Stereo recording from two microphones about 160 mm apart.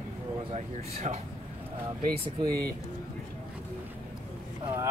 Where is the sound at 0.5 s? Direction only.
45° right (ahead or behind).